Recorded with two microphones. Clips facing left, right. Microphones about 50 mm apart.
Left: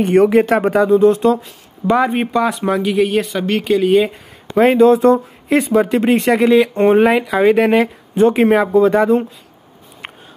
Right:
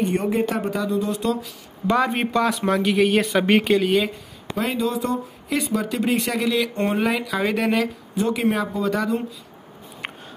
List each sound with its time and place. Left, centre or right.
0.1 s speech: left
1.9 s speech: centre
4.6 s speech: left
8.1 s speech: left